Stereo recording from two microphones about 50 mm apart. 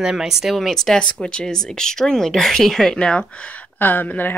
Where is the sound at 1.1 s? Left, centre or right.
Centre.